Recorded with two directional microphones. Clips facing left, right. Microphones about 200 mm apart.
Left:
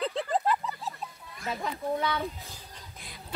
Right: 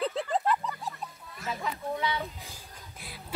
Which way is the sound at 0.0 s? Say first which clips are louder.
Even; centre (ahead or behind).